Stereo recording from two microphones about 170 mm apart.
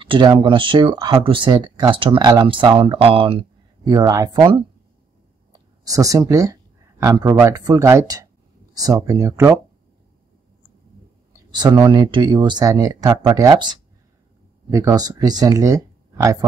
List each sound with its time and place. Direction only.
0.0 s speech: 30° right (ahead or behind)
5.5 s speech: 20° right (ahead or behind)
11.5 s speech: 25° right (ahead or behind)